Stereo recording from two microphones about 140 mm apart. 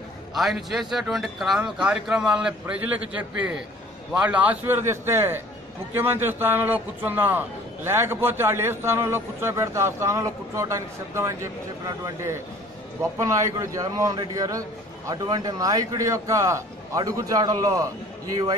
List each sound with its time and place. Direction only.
0.3 s a man's voice: centre (ahead or behind); by 18.5 s 25° right (ahead or behind)